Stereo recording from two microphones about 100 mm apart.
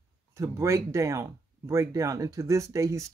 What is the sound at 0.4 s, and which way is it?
Speech, 30° right (ahead or behind).